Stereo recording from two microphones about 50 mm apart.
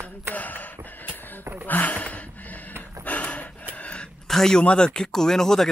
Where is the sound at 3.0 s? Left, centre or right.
Left.